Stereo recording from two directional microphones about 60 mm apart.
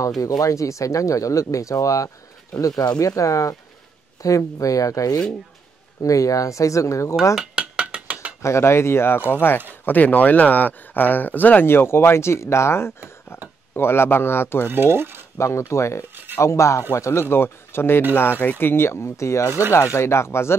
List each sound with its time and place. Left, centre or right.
0.4 s speech: left
7.3 s mechanisms: centre
8.4 s speech: left
14.7 s speech: right
15.3 s speech: left
16.0 s a sound: right
16.3 s speech: left